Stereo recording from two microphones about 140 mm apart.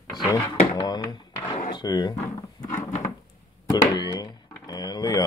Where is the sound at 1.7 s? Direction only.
30° left (ahead or behind).